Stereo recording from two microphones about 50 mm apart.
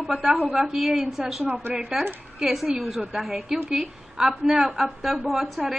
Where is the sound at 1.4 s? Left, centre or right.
Right.